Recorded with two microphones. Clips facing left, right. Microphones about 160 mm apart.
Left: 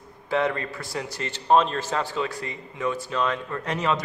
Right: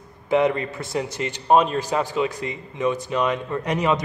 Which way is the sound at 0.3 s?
20° right (ahead or behind).